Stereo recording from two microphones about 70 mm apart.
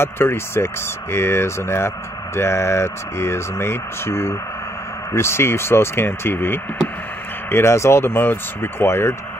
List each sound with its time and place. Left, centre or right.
0.0 s speech: left